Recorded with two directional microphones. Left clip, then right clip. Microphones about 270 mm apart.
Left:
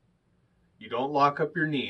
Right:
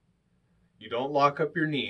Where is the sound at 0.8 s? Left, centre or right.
Centre.